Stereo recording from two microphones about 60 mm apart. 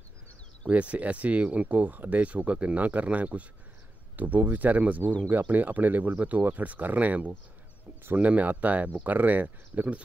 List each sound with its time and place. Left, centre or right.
0.7 s speech: right